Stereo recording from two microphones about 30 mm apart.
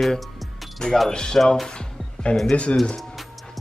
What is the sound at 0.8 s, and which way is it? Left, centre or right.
Speech, left.